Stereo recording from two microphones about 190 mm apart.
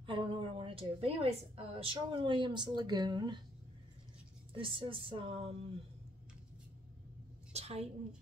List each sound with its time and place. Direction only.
0.0 s a woman's voice: 25° right (ahead or behind)
4.6 s speech: 25° right (ahead or behind)
7.5 s a woman's voice: 35° right (ahead or behind)